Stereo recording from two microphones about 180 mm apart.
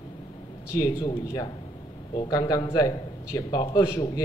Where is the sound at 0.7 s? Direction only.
20° left (ahead or behind).